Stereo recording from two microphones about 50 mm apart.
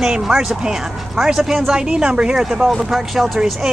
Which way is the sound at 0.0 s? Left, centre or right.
Centre.